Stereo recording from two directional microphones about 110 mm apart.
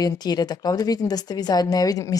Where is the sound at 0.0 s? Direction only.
35° left (ahead or behind).